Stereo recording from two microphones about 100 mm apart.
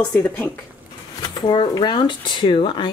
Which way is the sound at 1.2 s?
50° left (ahead or behind).